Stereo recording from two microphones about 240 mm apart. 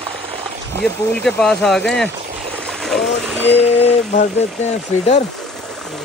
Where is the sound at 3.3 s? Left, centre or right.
Left.